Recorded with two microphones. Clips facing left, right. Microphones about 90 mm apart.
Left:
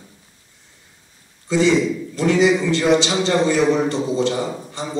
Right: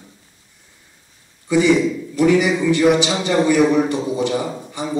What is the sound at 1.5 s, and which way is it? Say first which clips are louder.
A man's voice: right 2 dB; 15° right (ahead or behind).